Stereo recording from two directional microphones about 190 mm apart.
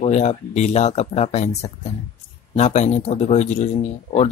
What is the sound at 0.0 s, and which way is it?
Speech, 35° left (ahead or behind).